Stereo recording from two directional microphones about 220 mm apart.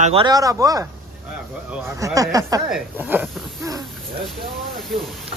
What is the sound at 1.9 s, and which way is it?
Speech, 15° right (ahead or behind).